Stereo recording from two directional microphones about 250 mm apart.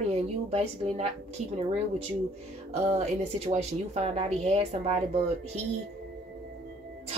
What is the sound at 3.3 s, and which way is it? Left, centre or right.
A woman's voice, right.